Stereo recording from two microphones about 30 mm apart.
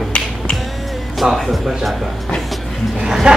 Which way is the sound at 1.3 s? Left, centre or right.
Centre.